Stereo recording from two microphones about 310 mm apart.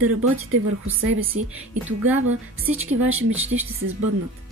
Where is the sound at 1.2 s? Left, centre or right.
Centre.